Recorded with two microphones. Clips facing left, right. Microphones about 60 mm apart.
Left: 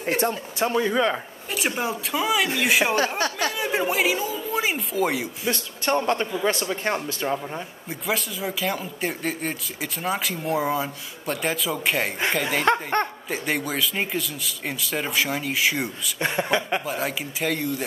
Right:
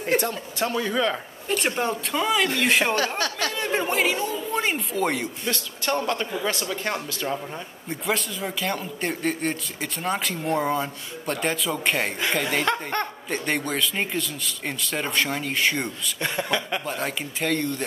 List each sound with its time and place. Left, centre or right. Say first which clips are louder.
0.2 s speech: left 3 dB; left
1.5 s speech: right 2 dB; centre
3.2 s speech: left 2 dB; left
3.5 s speech: right 2 dB; centre
5.5 s speech: left 3 dB; left
7.9 s speech: right 1 dB; centre
13.0 s a man's voice: left 3 dB; left
13.3 s speech: even; centre
16.2 s speech: left 3 dB; left
16.8 s speech: left 1 dB; centre